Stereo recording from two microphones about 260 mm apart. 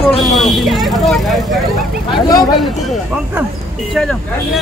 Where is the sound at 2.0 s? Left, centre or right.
Centre.